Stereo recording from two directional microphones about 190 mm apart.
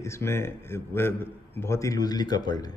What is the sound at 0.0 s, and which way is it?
A man's voice, 15° left (ahead or behind).